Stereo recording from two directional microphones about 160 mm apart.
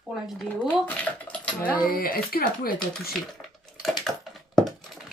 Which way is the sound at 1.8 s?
65° left (ahead or behind).